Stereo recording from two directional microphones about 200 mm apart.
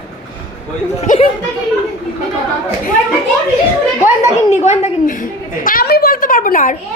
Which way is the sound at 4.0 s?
35° left (ahead or behind).